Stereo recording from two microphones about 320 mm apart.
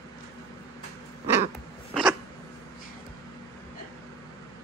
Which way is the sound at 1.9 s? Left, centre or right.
Centre.